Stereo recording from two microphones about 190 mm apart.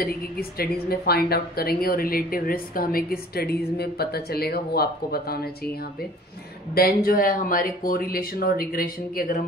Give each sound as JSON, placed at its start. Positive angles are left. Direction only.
{"t": 0.0, "sound": "a woman's voice", "side_deg": 55}
{"t": 6.7, "sound": "a woman's voice", "side_deg": 55}